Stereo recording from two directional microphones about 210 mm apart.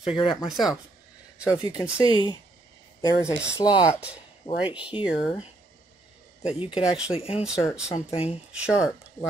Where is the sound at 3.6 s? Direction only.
20° left (ahead or behind).